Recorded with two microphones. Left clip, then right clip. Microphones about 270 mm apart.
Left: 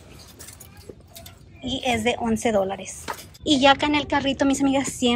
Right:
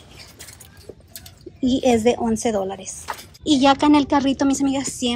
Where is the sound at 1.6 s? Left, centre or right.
Right.